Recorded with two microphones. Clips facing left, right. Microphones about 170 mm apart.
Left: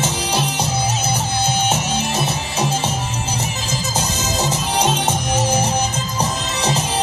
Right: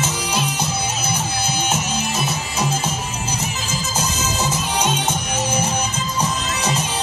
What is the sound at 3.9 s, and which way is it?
Music, 35° left (ahead or behind).